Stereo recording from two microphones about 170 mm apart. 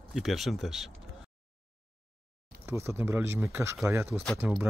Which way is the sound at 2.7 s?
15° right (ahead or behind).